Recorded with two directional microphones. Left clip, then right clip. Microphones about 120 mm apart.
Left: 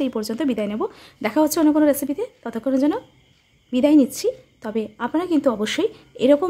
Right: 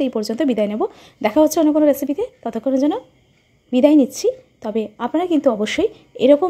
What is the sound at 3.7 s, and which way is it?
Speech, 25° right (ahead or behind).